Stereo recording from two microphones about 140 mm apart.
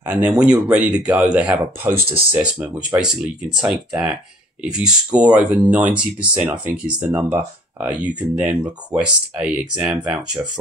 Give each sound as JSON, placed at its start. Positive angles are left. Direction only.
{"t": 0.0, "sound": "speech", "side_deg": -10}